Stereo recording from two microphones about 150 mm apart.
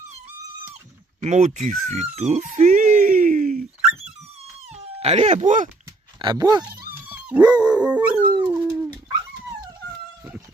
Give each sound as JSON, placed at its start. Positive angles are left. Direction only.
{"t": 1.2, "sound": "a sound", "side_deg": -55}
{"t": 4.7, "sound": "speech", "side_deg": -45}
{"t": 6.1, "sound": "speech", "side_deg": -30}
{"t": 6.9, "sound": "dog", "side_deg": -10}